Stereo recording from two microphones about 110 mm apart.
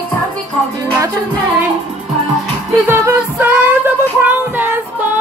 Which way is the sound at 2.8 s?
20° right (ahead or behind).